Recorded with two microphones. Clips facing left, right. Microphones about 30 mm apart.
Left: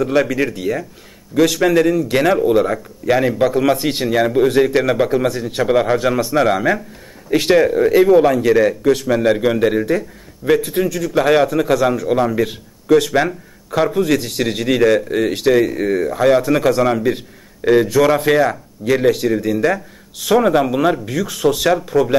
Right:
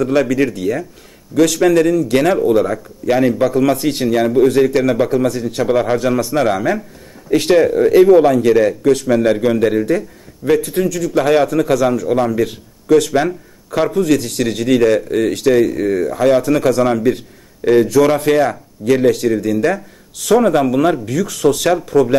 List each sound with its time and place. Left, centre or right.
0.0 s a man's voice: centre